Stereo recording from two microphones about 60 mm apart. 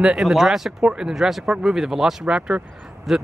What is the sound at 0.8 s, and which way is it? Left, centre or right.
Speech, centre.